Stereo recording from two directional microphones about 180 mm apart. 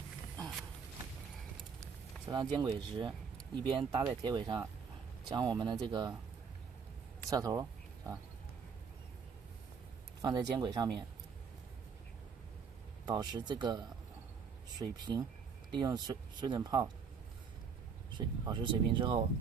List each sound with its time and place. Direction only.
1.8 s a sound: 20° right (ahead or behind)
2.6 s speech: 25° right (ahead or behind)
7.2 s speech: 20° right (ahead or behind)
10.2 s speech: 20° right (ahead or behind)
13.0 s speech: 25° right (ahead or behind)
18.1 s speech: 25° right (ahead or behind)